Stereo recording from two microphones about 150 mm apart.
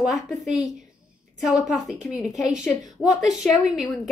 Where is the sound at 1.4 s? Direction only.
5° right (ahead or behind).